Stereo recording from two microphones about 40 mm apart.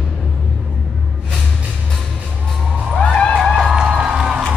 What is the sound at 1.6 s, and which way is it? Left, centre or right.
Music, right.